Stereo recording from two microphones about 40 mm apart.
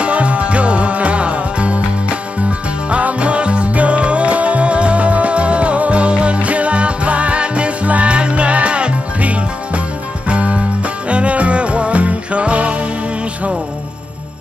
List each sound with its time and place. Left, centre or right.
0.0 s music: right